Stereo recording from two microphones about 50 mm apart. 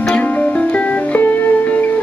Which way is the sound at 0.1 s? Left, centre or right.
Left.